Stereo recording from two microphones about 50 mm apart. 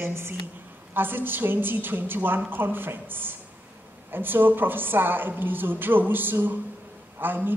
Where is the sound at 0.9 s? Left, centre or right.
Right.